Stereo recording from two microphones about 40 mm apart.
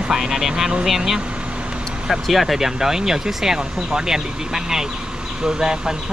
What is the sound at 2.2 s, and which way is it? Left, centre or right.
Speech, centre.